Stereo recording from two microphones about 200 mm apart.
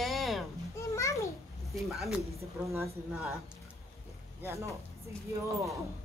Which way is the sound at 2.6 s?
15° right (ahead or behind).